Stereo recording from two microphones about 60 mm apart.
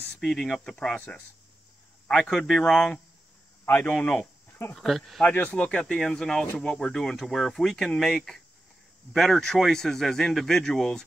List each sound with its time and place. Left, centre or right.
0.2 s speech: centre
1.1 s a man's voice: left
3.6 s speech: left
3.9 s speech: left
4.7 s speech: centre
5.5 s a man's voice: centre